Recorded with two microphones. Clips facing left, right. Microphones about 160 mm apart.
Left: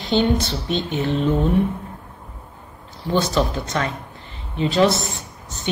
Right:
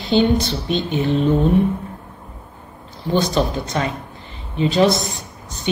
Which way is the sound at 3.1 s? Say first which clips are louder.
Right 2 dB; 15° right (ahead or behind).